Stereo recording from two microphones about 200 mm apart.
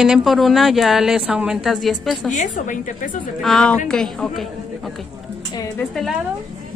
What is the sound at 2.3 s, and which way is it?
Speech, 40° left (ahead or behind).